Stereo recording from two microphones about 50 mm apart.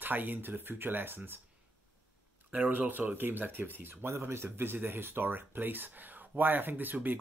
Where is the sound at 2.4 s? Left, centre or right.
Right.